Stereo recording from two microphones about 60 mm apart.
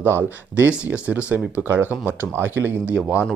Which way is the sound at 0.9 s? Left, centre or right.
Right.